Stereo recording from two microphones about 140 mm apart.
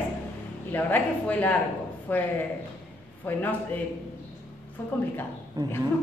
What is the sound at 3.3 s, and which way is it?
Speech, 10° left (ahead or behind).